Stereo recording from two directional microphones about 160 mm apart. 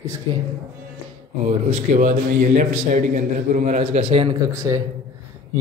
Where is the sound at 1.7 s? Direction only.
50° right (ahead or behind).